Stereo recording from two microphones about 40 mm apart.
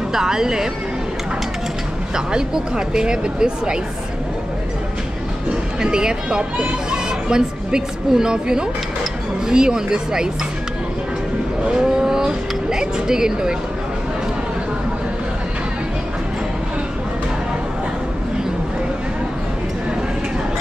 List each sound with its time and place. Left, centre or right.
0.1 s speech: centre
2.1 s speech: centre
5.5 s a woman's voice: centre
11.6 s vehicle: right
11.9 s a sound: centre